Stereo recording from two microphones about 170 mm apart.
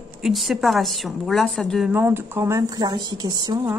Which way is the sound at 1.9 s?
10° right (ahead or behind).